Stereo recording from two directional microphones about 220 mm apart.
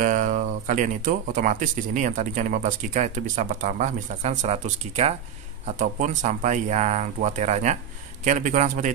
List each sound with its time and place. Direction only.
0.0 s speech: 35° right (ahead or behind)